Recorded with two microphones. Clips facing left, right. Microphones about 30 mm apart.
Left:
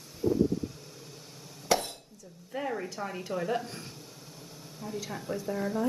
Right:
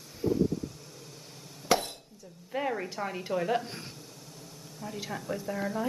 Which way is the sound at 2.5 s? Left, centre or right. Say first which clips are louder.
Right 2 dB; centre.